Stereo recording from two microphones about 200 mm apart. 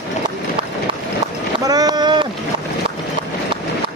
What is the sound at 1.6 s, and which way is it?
Boat, 20° right (ahead or behind).